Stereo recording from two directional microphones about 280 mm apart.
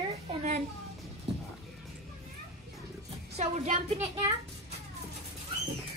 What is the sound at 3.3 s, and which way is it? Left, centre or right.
Speech, right.